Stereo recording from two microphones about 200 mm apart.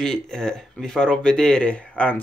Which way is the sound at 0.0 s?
Centre (ahead or behind).